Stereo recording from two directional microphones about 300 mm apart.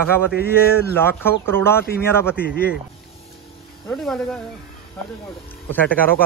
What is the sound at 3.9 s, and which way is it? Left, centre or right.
Speech, centre.